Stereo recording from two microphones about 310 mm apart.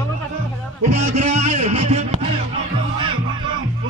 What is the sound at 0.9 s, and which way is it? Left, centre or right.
Music, right.